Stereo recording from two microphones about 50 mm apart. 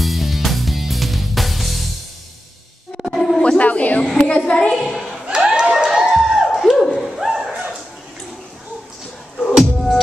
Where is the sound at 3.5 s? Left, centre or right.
Left.